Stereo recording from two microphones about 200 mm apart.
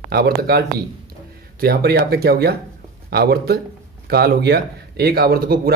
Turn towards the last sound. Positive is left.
turn(degrees=-50)  # may be behind; listen again after turning